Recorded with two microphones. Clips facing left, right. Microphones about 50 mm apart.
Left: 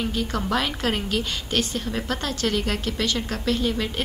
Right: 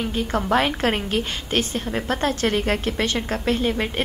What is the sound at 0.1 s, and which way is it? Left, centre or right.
A woman's voice, right.